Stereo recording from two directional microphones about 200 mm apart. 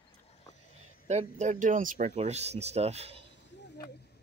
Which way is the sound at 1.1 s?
35° right (ahead or behind).